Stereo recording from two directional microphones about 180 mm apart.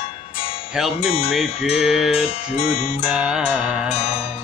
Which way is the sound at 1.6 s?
Centre (ahead or behind).